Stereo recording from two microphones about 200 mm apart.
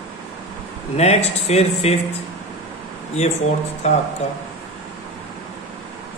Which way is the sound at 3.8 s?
35° left (ahead or behind).